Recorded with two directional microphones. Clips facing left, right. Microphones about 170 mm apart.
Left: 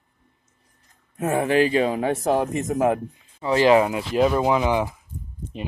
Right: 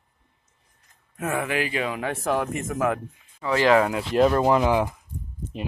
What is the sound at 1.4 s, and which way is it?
Speech, 30° left (ahead or behind).